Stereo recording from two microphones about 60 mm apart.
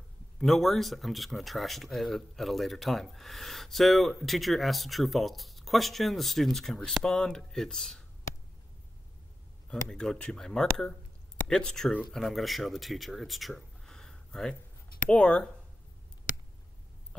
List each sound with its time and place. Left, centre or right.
0.4 s speech: centre
9.8 s speech: centre